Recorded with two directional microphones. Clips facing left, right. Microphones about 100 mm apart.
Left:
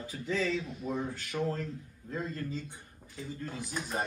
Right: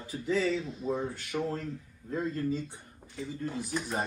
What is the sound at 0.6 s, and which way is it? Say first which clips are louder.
Speech: right 3 dB; 30° right (ahead or behind).